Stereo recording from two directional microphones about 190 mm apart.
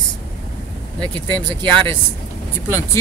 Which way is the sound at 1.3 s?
5° left (ahead or behind).